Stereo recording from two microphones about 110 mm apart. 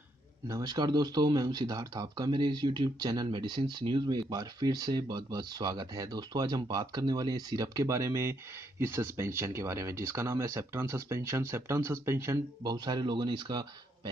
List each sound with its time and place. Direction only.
0.5 s speech: 35° right (ahead or behind)
12.6 s speech: 40° right (ahead or behind)